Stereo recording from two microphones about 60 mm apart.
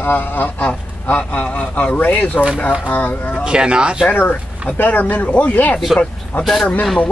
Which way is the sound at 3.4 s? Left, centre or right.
Centre.